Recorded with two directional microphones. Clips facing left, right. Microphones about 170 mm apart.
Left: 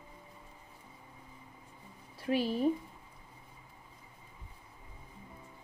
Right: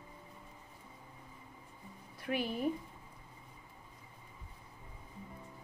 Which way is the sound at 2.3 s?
25° left (ahead or behind).